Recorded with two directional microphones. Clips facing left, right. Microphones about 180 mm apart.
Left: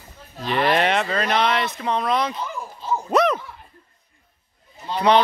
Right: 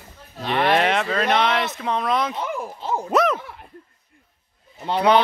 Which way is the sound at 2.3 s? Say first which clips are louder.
Right 3 dB; 60° right (ahead or behind).